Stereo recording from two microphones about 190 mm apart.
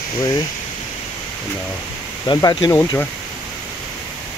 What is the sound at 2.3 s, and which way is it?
Speech, 20° left (ahead or behind).